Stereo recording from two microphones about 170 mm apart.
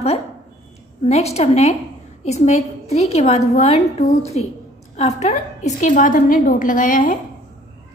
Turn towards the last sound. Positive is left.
turn(degrees=50)  # may be behind; listen again after turning